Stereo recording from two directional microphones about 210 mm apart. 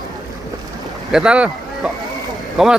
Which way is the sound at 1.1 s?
5° right (ahead or behind).